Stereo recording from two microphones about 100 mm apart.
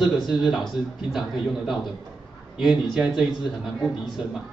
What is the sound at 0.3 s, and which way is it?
A man's voice, 5° right (ahead or behind).